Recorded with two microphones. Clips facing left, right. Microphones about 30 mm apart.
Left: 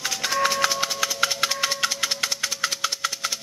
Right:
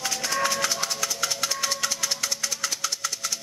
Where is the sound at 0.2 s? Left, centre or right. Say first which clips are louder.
Left 4 dB; centre.